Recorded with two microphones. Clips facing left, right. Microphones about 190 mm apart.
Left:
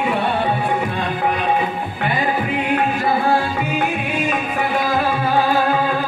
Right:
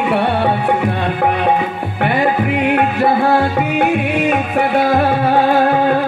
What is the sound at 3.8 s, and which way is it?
Music, 65° right (ahead or behind).